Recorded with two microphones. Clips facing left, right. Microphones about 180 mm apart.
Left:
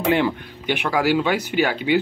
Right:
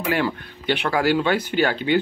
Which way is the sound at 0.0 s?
20° left (ahead or behind).